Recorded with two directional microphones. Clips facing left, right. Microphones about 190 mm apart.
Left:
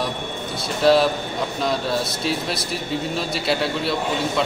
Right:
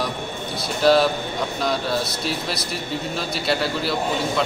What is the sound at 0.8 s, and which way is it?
A man's voice, centre (ahead or behind).